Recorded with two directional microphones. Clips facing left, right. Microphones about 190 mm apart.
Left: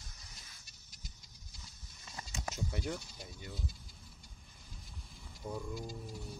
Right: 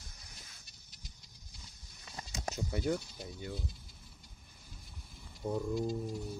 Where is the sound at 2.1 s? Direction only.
35° right (ahead or behind).